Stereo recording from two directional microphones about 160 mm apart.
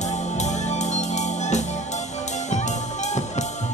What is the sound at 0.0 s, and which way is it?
Music, 45° left (ahead or behind).